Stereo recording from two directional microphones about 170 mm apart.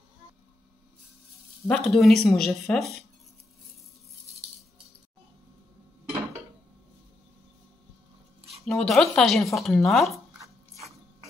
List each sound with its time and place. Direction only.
1.7 s speech: centre (ahead or behind)
8.5 s speech: centre (ahead or behind)